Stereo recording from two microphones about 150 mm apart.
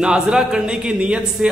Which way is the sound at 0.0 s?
5° right (ahead or behind).